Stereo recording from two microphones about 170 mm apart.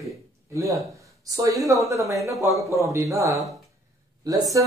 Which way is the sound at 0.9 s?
20° right (ahead or behind).